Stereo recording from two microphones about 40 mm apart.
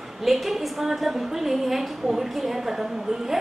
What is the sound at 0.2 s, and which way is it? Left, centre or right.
A woman's voice, centre.